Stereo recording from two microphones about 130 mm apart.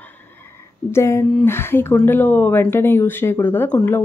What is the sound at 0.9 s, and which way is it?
A woman's voice, 20° left (ahead or behind).